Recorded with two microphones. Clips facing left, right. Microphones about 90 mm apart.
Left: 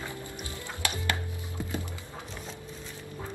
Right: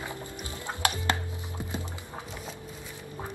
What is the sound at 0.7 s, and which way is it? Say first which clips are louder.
Music: right 4 dB; 25° right (ahead or behind).